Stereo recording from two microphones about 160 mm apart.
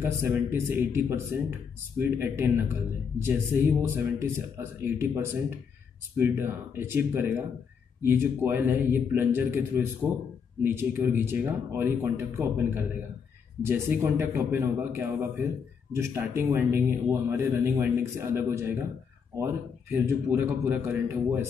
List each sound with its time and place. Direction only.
0.0 s a man's voice: 15° right (ahead or behind)